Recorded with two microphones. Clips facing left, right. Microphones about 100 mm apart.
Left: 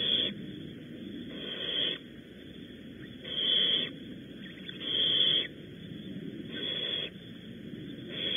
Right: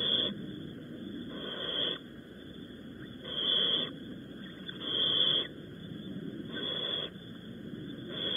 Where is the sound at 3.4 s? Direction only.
25° right (ahead or behind).